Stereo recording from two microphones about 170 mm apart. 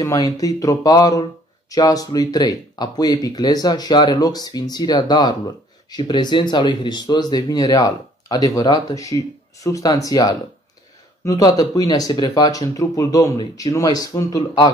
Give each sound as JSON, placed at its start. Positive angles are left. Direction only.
{"t": 0.0, "sound": "speech", "side_deg": 20}